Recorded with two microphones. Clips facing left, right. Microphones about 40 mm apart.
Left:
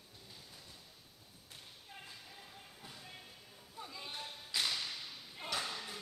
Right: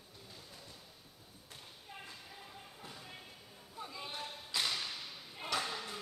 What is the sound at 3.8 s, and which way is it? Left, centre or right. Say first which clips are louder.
Thump: right 2 dB; centre.